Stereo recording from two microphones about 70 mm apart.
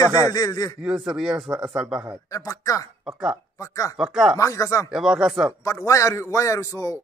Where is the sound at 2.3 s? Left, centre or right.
Left.